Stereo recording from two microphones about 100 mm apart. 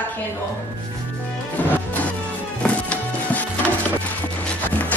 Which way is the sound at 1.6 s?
15° left (ahead or behind).